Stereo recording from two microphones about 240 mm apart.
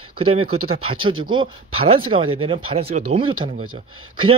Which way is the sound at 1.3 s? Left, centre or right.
Right.